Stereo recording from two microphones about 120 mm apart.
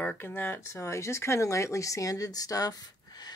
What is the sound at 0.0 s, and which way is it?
Speech, 15° left (ahead or behind).